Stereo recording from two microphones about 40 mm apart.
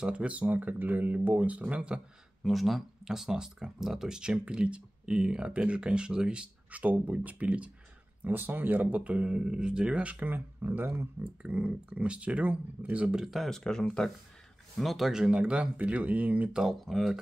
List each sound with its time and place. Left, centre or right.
0.0 s speech: right
2.4 s speech: centre; by 6.5 s right
6.7 s speech: right
8.2 s speech: right
10.2 s speech: right
11.4 s speech: right
13.2 s speech: centre
13.5 s speech: centre
14.8 s speech: centre
15.0 s speech: centre; by 16.4 s right
16.8 s speech: centre